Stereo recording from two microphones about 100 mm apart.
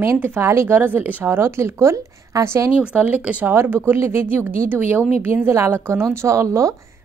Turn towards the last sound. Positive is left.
turn(degrees=-30)  # may be behind; listen again after turning